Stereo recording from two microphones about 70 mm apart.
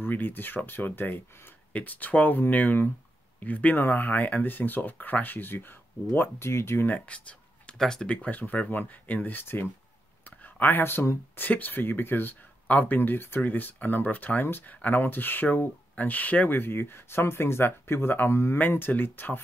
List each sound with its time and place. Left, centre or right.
0.0 s speech: left
7.1 s speech: centre; by 11.4 s left
11.4 s speech: left